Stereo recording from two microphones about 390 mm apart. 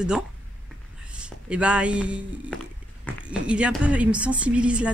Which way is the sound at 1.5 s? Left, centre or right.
Centre.